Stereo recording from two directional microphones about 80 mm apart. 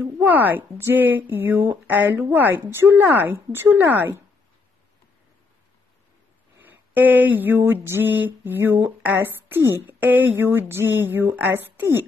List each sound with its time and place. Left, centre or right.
0.0 s speech: right
6.6 s a sound: right
8.5 s speech: right